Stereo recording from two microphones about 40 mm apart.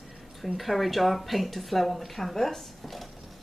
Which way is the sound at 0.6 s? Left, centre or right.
Centre.